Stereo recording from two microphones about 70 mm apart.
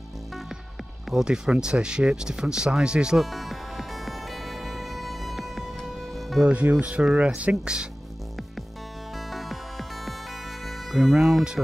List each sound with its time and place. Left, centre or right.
1.1 s speech: centre
3.3 s music: centre
6.4 s speech: centre
9.3 s music: centre
10.9 s speech: centre